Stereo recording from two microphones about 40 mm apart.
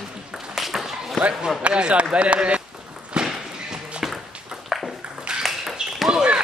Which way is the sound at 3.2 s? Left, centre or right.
Centre.